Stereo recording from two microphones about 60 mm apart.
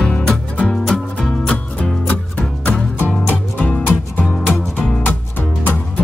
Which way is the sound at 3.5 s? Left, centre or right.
Left.